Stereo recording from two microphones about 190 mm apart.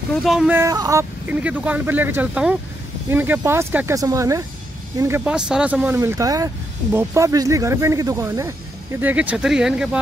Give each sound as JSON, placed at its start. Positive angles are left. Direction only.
{"t": 0.1, "sound": "speech", "side_deg": 0}